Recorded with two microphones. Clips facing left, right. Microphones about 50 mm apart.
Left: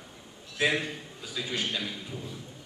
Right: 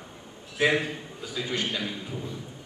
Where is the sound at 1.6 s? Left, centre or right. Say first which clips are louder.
Right 2 dB; centre.